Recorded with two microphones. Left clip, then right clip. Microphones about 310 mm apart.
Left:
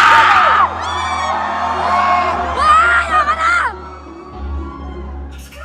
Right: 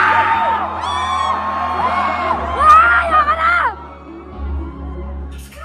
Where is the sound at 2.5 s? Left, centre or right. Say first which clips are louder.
Right 2 dB; centre.